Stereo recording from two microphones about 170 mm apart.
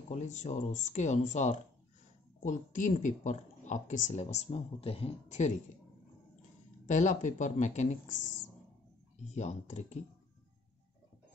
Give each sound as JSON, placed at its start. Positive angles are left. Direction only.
{"t": 0.1, "sound": "speech", "side_deg": 45}
{"t": 6.9, "sound": "speech", "side_deg": 45}
{"t": 9.3, "sound": "speech", "side_deg": 45}